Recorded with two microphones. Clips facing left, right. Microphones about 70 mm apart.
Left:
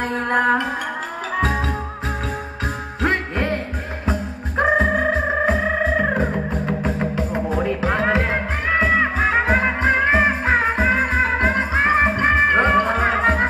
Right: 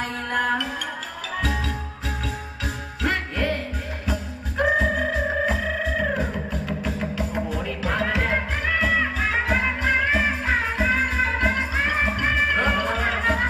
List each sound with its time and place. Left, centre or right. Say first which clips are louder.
0.0 s music: left 6 dB; left
3.0 s music: left 4 dB; left